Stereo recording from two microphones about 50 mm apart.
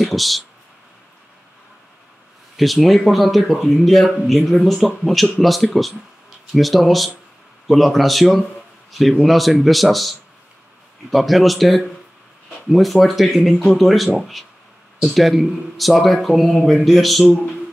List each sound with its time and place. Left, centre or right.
0.0 s speech: centre
2.5 s speech: centre
17.2 s speech: centre